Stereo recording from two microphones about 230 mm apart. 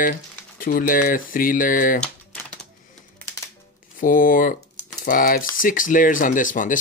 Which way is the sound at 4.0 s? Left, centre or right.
Left.